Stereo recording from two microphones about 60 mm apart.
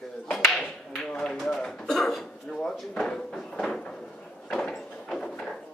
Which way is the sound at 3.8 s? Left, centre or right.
Centre.